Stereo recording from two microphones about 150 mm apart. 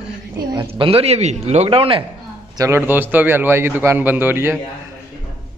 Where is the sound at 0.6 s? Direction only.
35° right (ahead or behind).